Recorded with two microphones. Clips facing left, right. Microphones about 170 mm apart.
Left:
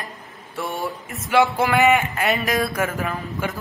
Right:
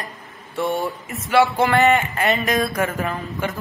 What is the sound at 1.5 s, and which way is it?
A man's voice, 5° left (ahead or behind).